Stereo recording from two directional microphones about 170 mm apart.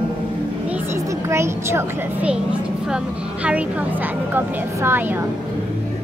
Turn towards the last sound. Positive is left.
turn(degrees=-10)  # may be behind; listen again after turning